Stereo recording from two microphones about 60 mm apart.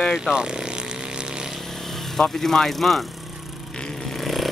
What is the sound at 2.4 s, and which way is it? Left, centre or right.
Speech, centre.